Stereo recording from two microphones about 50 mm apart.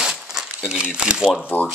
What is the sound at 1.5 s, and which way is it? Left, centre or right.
Speech, left.